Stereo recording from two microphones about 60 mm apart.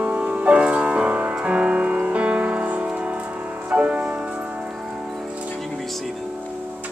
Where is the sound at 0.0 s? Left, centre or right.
Centre.